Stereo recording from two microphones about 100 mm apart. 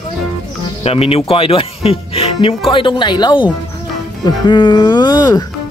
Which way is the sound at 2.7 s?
55° left (ahead or behind).